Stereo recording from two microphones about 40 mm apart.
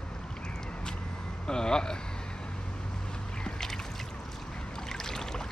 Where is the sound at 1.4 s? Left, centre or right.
Centre.